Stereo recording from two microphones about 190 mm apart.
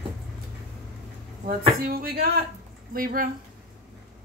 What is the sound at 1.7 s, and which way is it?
A woman's voice, 50° right (ahead or behind).